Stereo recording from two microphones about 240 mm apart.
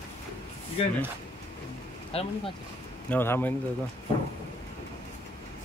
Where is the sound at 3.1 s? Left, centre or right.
Centre.